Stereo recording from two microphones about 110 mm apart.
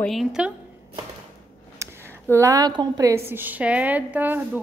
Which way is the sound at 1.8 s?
25° right (ahead or behind).